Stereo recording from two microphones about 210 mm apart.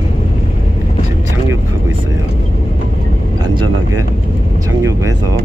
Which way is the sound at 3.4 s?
20° right (ahead or behind).